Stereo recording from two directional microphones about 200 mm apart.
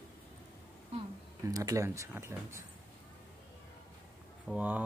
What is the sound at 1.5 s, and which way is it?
Speech, 15° right (ahead or behind).